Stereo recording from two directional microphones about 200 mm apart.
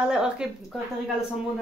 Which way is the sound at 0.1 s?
5° right (ahead or behind).